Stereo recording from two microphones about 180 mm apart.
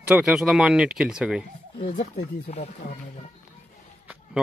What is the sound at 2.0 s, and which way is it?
Speech, 40° left (ahead or behind).